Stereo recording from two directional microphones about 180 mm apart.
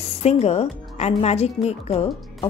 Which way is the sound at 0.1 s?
35° left (ahead or behind).